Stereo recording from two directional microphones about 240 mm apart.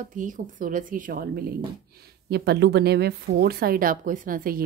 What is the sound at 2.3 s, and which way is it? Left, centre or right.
A woman's voice, right.